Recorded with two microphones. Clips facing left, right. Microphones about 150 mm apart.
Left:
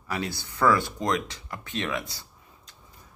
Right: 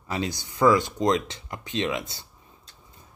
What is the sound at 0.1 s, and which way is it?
Speech, 20° right (ahead or behind).